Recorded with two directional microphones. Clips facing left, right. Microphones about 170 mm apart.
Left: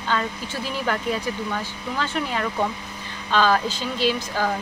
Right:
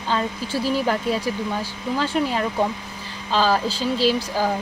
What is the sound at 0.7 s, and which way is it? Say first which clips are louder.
Speech: right 3 dB; 35° right (ahead or behind).